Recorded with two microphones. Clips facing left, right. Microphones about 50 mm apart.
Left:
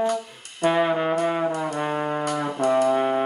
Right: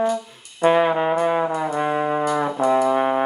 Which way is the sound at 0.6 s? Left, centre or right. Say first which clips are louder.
Right 4 dB; right.